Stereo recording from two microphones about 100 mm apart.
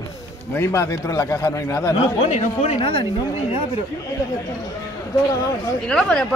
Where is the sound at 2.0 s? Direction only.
65° left (ahead or behind).